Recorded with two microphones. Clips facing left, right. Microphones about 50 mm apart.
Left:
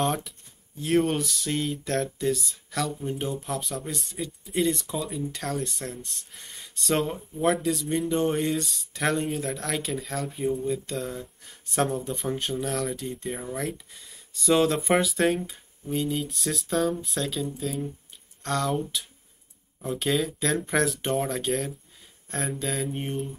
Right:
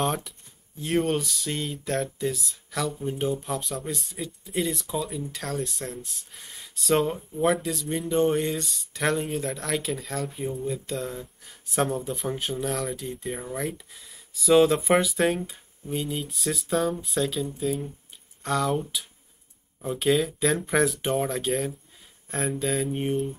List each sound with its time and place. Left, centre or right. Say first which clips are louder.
0.0 s speech: even; centre